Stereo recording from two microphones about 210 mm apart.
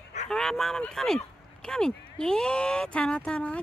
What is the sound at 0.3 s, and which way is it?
Speech, centre (ahead or behind).